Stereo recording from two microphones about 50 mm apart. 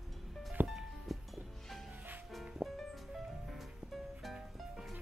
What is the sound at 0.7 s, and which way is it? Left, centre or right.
Music, centre.